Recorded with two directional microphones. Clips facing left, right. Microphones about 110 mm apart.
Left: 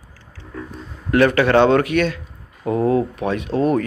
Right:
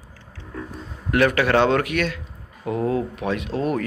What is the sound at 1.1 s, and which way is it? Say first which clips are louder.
Speech: left 4 dB; 5° right (ahead or behind).